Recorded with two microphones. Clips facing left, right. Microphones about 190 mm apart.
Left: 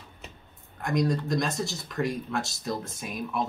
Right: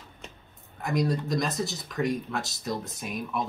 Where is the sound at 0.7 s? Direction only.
5° right (ahead or behind).